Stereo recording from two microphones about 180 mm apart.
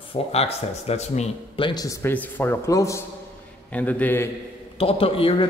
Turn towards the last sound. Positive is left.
turn(degrees=30)  # may be behind; listen again after turning